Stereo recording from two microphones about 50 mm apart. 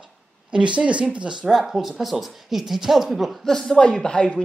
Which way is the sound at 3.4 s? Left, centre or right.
Centre.